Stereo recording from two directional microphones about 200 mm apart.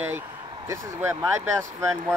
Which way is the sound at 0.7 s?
10° right (ahead or behind).